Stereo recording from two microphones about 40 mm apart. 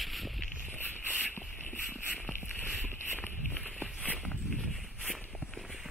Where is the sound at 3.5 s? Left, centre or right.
Left.